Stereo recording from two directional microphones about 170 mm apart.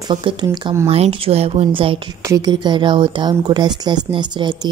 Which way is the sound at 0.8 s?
35° right (ahead or behind).